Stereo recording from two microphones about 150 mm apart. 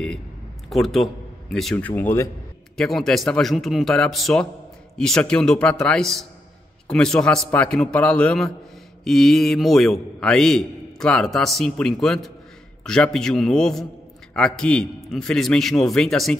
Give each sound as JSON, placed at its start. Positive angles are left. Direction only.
{"t": 0.7, "sound": "a man's voice", "side_deg": 0}
{"t": 2.8, "sound": "a man's voice", "side_deg": 0}